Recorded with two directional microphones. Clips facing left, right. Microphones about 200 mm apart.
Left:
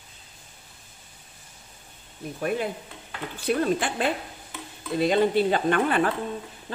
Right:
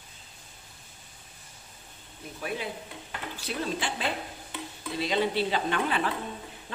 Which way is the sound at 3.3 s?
55° left (ahead or behind).